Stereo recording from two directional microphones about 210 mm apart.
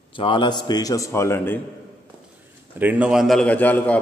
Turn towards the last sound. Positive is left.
turn(degrees=5)  # may be behind; listen again after turning